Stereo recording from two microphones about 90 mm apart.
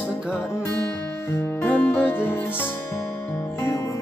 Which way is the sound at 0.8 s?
15° left (ahead or behind).